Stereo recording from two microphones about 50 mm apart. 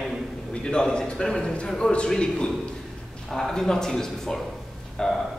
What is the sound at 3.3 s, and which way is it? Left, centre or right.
A man's voice, centre.